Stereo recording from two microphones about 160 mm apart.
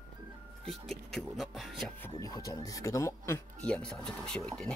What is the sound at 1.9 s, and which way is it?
Speech, 15° left (ahead or behind).